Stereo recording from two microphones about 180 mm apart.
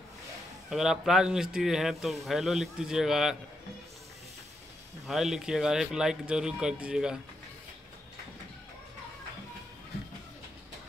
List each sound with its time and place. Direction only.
0.7 s a man's voice: centre (ahead or behind)
5.0 s a man's voice: centre (ahead or behind)